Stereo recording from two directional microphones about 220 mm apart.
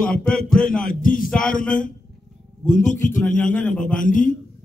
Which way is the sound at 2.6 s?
35° left (ahead or behind).